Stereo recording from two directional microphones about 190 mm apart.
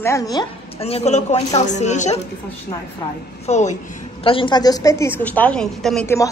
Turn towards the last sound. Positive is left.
turn(degrees=5)  # may be behind; listen again after turning